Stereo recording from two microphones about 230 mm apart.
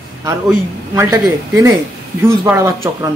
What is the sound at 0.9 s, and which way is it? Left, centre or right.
Speech, centre.